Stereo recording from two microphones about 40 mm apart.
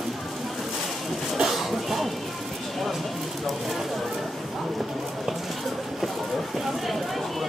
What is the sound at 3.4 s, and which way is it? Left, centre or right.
Speech, centre.